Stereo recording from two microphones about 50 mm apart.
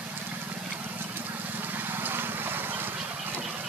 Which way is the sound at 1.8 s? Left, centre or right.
Right.